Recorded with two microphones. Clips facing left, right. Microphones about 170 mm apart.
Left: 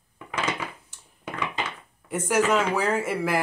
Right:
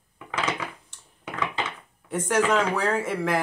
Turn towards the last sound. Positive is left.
turn(degrees=5)  # may be behind; listen again after turning